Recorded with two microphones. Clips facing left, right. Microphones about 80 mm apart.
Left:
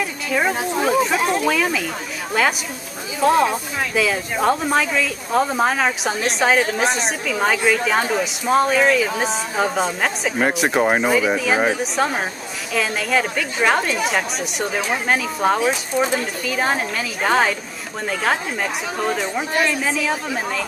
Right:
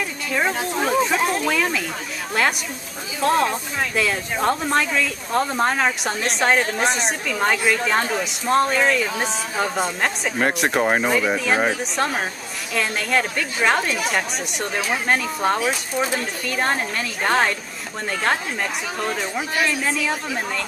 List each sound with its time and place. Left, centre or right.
0.0 s speech: centre
3.2 s speech: centre